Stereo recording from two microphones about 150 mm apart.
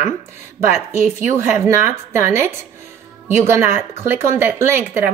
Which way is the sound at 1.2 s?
20° right (ahead or behind).